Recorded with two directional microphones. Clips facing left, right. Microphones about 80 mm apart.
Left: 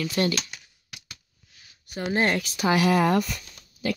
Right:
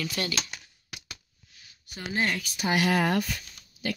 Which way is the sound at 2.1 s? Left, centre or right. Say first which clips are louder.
Left 5 dB; left.